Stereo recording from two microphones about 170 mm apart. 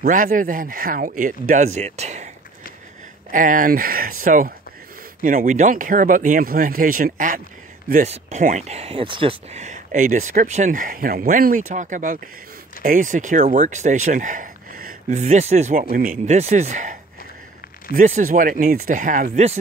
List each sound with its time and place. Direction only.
0.0 s speech: 55° right (ahead or behind)
3.3 s speech: 55° right (ahead or behind)
7.9 s speech: 45° right (ahead or behind)
15.0 s speech: 45° right (ahead or behind)
15.9 s speech: 55° right (ahead or behind)
16.3 s speech: 40° right (ahead or behind)